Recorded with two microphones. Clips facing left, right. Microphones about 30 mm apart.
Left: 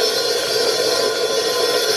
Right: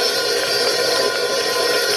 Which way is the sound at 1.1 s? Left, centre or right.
Centre.